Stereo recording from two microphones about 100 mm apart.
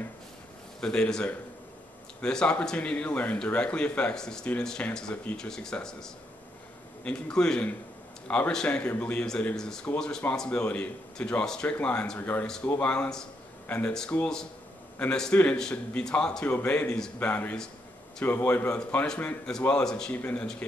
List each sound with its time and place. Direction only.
0.7 s a man's voice: 10° left (ahead or behind)
7.1 s a man's voice: 10° left (ahead or behind)
12.9 s a man's voice: 5° left (ahead or behind)